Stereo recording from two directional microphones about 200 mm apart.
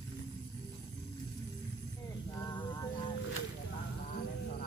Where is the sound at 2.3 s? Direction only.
20° left (ahead or behind).